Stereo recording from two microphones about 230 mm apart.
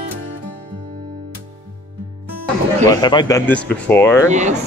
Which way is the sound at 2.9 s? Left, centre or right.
Centre.